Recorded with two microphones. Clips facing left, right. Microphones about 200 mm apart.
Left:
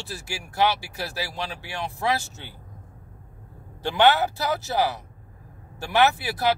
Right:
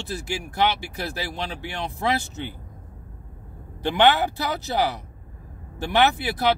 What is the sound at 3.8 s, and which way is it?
Speech, 15° right (ahead or behind).